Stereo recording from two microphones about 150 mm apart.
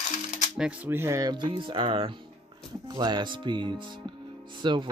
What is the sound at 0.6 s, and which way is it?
Speech, 10° right (ahead or behind).